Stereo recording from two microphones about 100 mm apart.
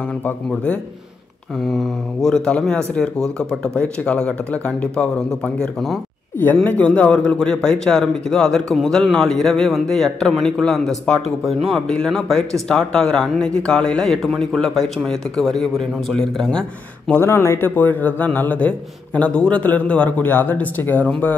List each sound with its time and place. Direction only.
1.7 s speech: 5° left (ahead or behind)
6.4 s speech: 20° left (ahead or behind)
17.1 s speech: 25° left (ahead or behind)